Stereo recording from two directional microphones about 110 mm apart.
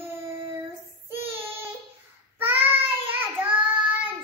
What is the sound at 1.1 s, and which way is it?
Child singing, 20° right (ahead or behind).